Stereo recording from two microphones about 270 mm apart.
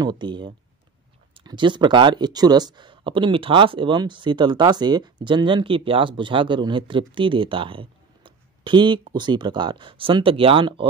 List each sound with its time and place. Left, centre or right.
0.0 s speech: centre